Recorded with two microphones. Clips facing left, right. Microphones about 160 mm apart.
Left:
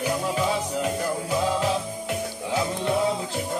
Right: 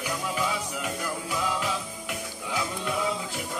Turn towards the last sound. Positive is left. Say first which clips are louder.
# left 6 dB
turn(degrees=35)  # may be behind; listen again after turning